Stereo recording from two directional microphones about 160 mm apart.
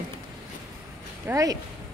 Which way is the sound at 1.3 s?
20° right (ahead or behind).